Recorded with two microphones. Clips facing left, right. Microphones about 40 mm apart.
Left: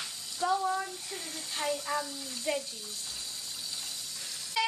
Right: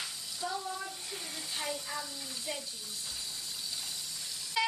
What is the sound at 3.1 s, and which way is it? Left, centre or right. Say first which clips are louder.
Vehicle: even; centre.